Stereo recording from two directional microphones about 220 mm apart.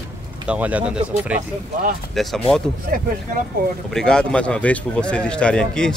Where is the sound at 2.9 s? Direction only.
40° right (ahead or behind).